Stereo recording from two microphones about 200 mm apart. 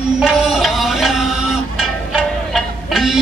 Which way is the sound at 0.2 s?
Centre (ahead or behind).